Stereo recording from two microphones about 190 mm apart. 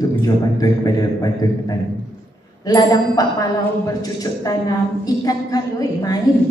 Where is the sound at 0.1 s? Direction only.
20° left (ahead or behind).